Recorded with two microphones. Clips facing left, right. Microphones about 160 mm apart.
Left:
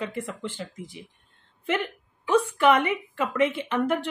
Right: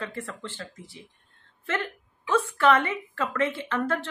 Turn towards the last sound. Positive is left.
turn(degrees=15)  # may be behind; listen again after turning